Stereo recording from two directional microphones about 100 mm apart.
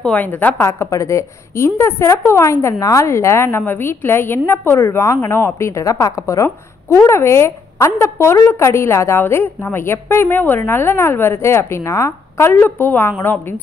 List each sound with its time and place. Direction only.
0.0 s a woman's voice: 15° left (ahead or behind)